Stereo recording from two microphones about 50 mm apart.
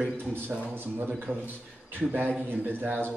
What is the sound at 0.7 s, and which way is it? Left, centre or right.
Speech, right.